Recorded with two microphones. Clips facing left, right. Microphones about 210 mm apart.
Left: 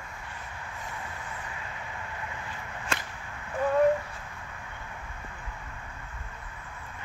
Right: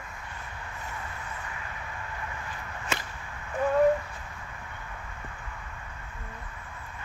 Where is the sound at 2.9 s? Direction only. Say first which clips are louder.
Right 1 dB; 5° right (ahead or behind).